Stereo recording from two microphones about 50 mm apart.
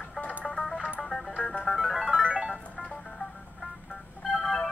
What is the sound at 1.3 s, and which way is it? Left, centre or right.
Music, left.